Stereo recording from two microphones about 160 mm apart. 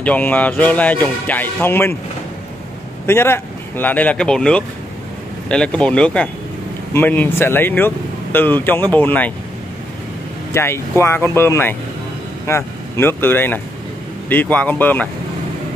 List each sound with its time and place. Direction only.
0.0 s speech: 10° left (ahead or behind)
3.1 s speech: 15° left (ahead or behind)
10.5 s speech: 15° left (ahead or behind)